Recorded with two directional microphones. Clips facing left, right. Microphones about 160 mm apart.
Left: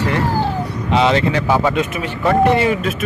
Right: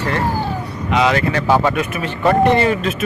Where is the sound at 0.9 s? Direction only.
25° left (ahead or behind); by 2.9 s 10° left (ahead or behind).